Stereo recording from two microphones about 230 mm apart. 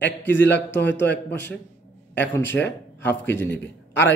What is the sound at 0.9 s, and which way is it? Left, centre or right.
Speech, left.